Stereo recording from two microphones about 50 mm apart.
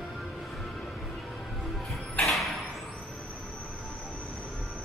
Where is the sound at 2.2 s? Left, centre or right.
Centre.